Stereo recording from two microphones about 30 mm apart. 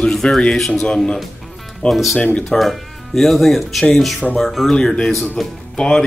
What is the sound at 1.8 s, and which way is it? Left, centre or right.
Speech, left.